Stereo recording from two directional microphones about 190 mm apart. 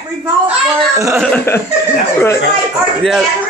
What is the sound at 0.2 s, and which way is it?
Speech, 15° right (ahead or behind).